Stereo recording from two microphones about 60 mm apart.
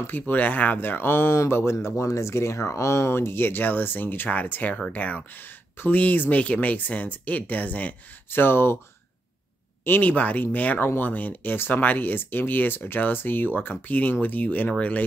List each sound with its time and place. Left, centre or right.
0.0 s speech: left
8.3 s speech: left
9.8 s speech: left